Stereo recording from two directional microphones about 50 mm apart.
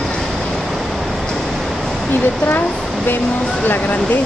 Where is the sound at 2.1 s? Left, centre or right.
Left.